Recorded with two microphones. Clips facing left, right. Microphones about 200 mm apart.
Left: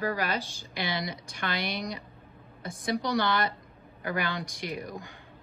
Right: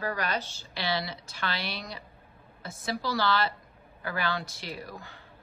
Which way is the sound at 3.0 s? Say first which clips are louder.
Right 1 dB; 20° left (ahead or behind).